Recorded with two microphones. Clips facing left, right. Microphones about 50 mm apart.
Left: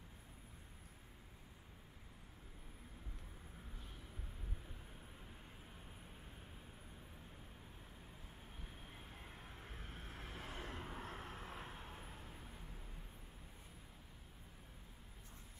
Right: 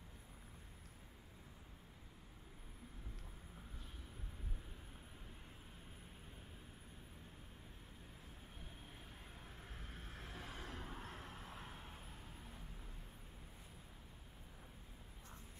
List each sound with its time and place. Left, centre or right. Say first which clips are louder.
9.4 s vehicle: left 1 dB; centre